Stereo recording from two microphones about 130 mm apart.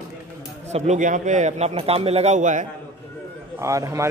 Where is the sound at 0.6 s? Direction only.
60° right (ahead or behind); by 2.7 s 75° right (ahead or behind).